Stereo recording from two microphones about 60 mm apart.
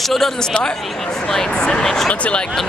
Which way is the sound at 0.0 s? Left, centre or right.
Centre.